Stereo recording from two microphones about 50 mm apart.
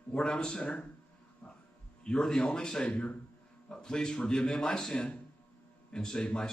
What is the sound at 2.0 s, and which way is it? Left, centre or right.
Speech, centre.